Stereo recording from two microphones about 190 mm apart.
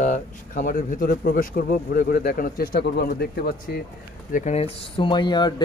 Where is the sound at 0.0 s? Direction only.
40° left (ahead or behind).